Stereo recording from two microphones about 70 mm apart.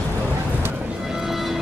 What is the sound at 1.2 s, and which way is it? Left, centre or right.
Vehicle, centre.